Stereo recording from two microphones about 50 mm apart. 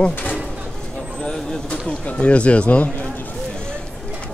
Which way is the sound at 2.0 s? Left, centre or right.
Left.